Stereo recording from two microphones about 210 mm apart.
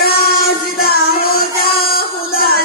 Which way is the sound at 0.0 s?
50° left (ahead or behind).